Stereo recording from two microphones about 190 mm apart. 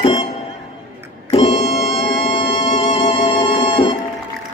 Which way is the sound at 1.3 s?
35° left (ahead or behind).